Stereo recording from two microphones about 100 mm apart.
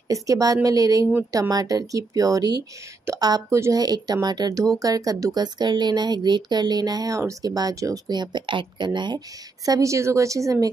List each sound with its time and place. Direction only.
0.1 s speech: 35° right (ahead or behind)
3.8 s speech: 40° right (ahead or behind)
8.1 s speech: 50° right (ahead or behind)
9.7 s speech: 30° right (ahead or behind)